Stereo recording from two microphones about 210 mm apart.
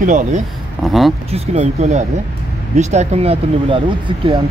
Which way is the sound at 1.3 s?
35° right (ahead or behind).